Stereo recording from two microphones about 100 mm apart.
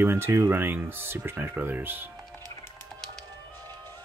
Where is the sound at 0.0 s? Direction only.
25° right (ahead or behind).